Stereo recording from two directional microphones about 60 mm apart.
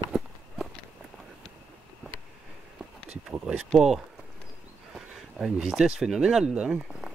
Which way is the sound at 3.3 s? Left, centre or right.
Centre.